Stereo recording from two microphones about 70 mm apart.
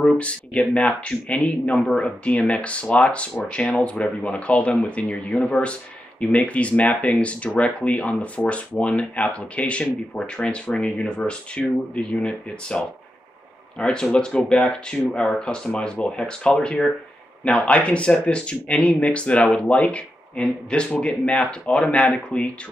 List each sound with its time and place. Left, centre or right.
0.0 s speech: centre